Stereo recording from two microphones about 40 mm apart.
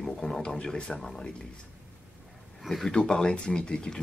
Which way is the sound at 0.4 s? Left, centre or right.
Centre.